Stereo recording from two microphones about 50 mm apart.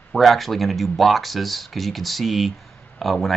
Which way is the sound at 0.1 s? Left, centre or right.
Centre.